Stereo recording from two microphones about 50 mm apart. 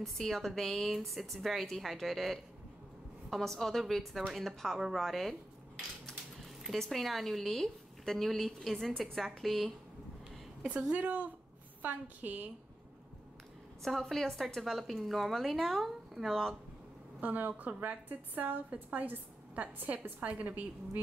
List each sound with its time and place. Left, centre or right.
0.0 s a woman's voice: centre
6.8 s a woman's voice: centre
11.0 s a woman's voice: right
13.8 s a woman's voice: centre
17.2 s a woman's voice: right